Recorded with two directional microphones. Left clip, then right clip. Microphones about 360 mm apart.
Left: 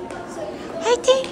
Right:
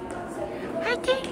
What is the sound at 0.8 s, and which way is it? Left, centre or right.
Speech, centre.